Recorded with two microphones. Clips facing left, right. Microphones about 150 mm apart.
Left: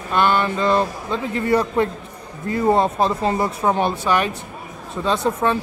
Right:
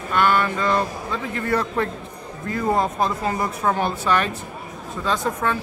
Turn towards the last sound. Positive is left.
turn(degrees=20)  # may be behind; listen again after turning